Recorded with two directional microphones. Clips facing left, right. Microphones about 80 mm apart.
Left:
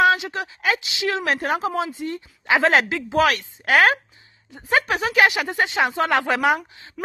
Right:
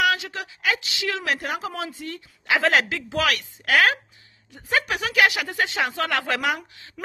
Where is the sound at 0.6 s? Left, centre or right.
Left.